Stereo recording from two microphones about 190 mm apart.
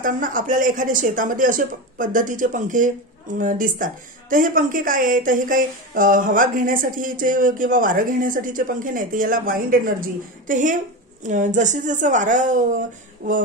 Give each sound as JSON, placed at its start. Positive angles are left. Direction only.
{"t": 0.0, "sound": "a woman's voice", "side_deg": -45}